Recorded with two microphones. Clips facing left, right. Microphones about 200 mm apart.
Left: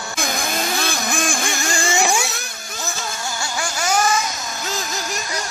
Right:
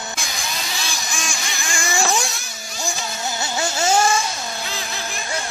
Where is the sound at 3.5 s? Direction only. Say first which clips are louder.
Right 2 dB; 25° right (ahead or behind).